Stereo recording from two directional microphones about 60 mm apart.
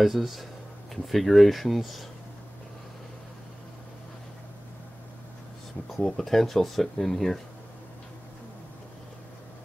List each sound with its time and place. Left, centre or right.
0.0 s speech: centre
5.9 s speech: centre